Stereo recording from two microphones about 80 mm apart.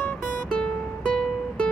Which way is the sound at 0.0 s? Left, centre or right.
Left.